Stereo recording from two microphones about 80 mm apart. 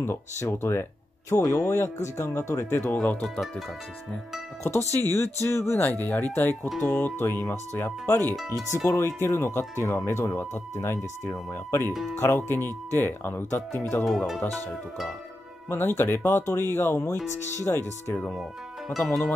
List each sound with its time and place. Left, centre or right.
0.0 s speech: left
3.0 s speech: centre
4.6 s speech: left
5.8 s speech: left
14.0 s speech: centre
15.7 s speech: left